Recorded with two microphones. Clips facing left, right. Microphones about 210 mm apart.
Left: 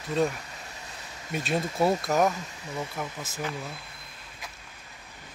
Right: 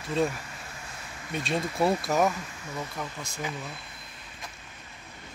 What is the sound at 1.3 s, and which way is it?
Speech, centre (ahead or behind).